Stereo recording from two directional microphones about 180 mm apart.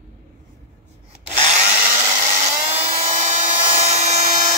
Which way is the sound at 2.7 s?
35° right (ahead or behind).